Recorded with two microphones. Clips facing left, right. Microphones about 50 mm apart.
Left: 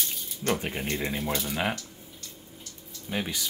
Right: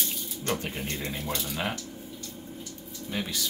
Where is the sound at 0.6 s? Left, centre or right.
Centre.